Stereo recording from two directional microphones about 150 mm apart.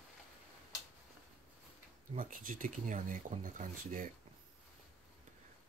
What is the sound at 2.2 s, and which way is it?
Speech, 60° right (ahead or behind).